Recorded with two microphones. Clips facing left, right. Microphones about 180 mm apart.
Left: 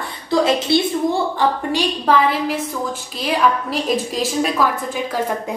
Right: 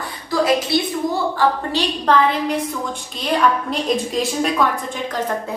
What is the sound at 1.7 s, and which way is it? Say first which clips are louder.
A woman's voice: left 1 dB; 10° left (ahead or behind).